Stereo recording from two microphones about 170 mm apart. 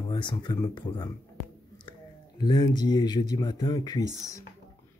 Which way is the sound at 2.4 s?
25° left (ahead or behind).